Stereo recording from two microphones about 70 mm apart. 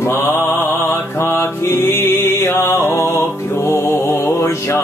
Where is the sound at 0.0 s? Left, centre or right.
Left.